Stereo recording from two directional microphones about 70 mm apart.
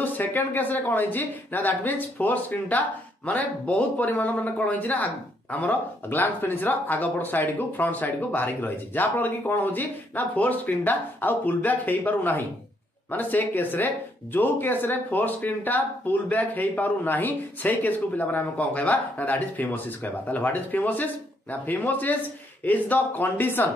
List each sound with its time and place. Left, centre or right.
0.0 s speech: left